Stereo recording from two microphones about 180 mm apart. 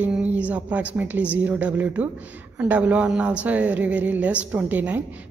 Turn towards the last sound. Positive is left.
turn(degrees=-10)  # may be behind; listen again after turning